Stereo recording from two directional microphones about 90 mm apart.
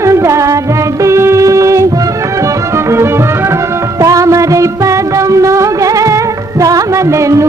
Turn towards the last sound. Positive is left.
turn(degrees=-35)  # may be behind; listen again after turning